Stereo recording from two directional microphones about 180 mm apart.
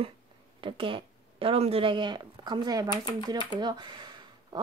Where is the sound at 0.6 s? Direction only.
30° right (ahead or behind).